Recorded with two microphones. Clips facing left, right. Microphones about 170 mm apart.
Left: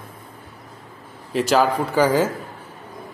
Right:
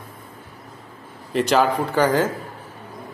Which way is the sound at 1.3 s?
Centre (ahead or behind).